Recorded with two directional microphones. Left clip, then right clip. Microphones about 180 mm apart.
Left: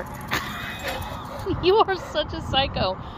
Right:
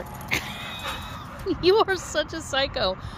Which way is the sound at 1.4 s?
25° right (ahead or behind).